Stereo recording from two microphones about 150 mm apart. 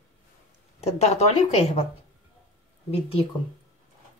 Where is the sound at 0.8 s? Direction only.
45° left (ahead or behind).